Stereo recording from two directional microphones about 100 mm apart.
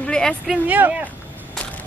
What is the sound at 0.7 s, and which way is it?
Speech, 15° right (ahead or behind).